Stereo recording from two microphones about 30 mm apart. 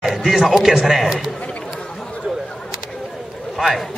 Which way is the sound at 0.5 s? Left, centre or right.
Centre.